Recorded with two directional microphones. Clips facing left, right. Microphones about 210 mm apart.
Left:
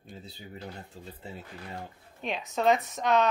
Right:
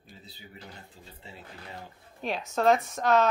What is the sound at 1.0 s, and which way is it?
Speech, 45° left (ahead or behind).